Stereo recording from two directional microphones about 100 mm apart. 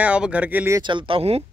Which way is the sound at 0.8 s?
55° right (ahead or behind).